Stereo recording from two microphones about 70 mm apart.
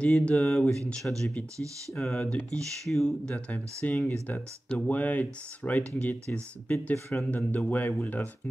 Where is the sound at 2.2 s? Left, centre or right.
Centre.